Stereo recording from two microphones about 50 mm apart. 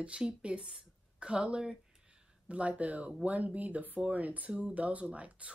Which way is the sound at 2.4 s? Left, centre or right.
Right.